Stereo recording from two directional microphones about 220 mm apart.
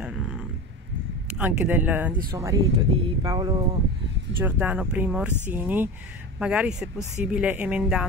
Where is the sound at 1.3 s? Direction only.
5° right (ahead or behind).